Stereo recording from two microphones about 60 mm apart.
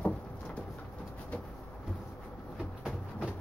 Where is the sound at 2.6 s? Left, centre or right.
Centre.